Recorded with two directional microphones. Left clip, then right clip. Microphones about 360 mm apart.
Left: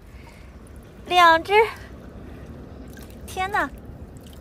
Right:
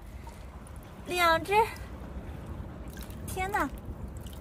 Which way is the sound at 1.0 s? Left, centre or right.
Centre.